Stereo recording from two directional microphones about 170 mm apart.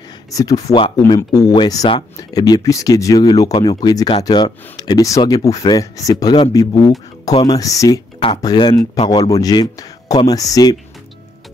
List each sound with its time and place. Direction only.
0.3 s speech: 20° left (ahead or behind)